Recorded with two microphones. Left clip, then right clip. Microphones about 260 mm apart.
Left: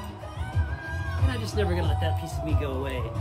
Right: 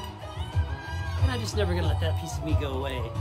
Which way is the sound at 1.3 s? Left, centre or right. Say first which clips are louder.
Even; centre.